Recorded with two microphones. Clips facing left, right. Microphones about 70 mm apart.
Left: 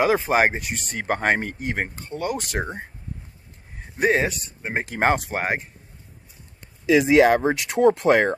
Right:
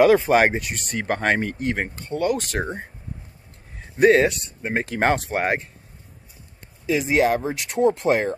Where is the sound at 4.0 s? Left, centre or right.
Centre.